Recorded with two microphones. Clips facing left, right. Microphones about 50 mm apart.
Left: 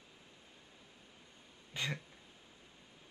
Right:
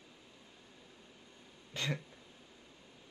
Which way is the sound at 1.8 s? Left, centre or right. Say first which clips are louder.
Right 1 dB; centre.